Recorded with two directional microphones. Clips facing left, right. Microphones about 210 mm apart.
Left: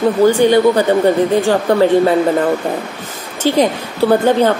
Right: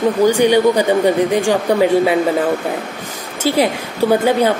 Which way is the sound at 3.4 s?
10° right (ahead or behind).